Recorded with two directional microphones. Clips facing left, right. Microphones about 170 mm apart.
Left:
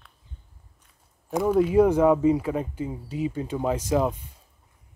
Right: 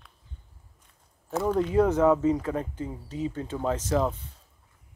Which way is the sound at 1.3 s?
10° left (ahead or behind).